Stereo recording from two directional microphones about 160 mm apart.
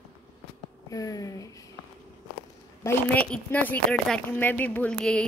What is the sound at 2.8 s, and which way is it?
Speech, 10° left (ahead or behind).